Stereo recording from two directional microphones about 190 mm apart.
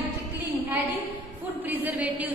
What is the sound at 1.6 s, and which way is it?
Speech, 10° right (ahead or behind).